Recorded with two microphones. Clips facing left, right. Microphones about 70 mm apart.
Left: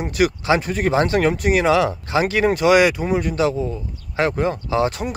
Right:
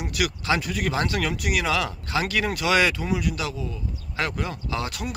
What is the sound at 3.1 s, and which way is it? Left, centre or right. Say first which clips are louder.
Speech: left 8 dB; left.